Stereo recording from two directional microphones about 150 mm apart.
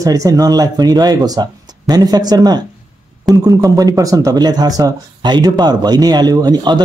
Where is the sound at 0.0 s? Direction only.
25° right (ahead or behind).